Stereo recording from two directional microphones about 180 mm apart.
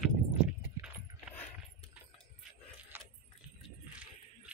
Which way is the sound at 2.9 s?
10° right (ahead or behind).